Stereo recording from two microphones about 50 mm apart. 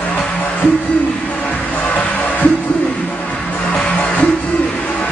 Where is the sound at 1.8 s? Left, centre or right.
Left.